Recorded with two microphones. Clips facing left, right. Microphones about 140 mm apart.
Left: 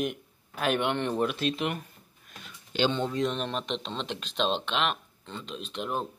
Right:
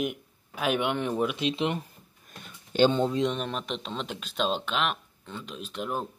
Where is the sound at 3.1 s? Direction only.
20° right (ahead or behind).